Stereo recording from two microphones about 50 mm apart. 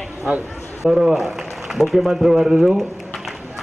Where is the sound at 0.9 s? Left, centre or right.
Centre.